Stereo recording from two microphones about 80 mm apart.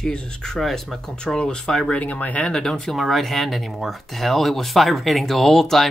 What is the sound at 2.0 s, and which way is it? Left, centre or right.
Speech, centre.